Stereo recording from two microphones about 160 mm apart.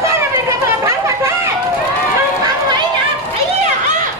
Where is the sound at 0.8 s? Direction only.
15° right (ahead or behind).